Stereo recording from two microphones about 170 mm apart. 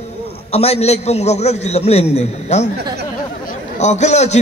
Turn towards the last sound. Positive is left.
turn(degrees=40)  # may be behind; listen again after turning